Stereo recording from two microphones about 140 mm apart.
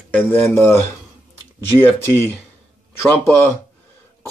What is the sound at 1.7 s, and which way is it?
Speech, 15° left (ahead or behind).